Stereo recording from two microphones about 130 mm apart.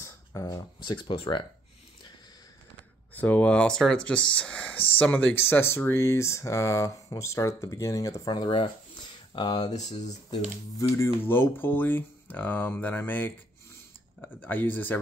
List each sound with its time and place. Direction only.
0.0 s speech: 25° left (ahead or behind); by 1.4 s 40° left (ahead or behind)
3.2 s speech: 10° left (ahead or behind)
8.4 s speech: 40° left (ahead or behind)
9.7 s speech: 60° left (ahead or behind)
10.8 s speech: 20° left (ahead or behind)
14.3 s speech: 15° left (ahead or behind)